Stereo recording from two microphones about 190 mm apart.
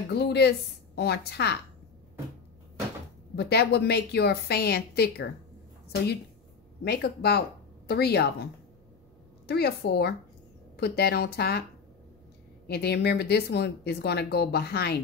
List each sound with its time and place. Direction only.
0.1 s speech: 60° left (ahead or behind)
3.3 s speech: 60° left (ahead or behind)
6.8 s speech: 60° left (ahead or behind)
9.5 s speech: 55° left (ahead or behind)
12.6 s speech: 55° left (ahead or behind)